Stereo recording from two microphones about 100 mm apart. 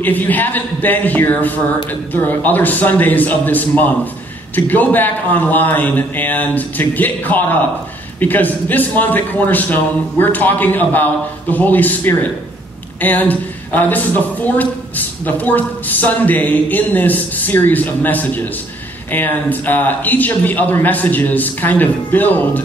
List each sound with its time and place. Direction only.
0.0 s speech: 15° left (ahead or behind)